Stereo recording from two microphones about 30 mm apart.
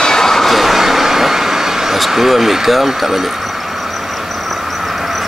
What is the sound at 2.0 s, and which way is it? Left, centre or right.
Speech, centre.